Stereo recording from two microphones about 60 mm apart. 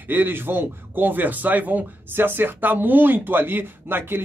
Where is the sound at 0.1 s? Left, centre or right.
Right.